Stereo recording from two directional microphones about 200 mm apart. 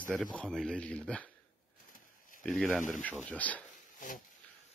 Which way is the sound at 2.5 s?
5° left (ahead or behind).